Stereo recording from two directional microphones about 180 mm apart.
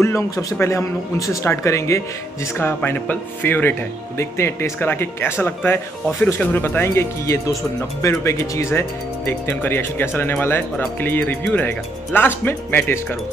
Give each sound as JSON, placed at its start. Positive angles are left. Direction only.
{"t": 0.0, "sound": "speech", "side_deg": 15}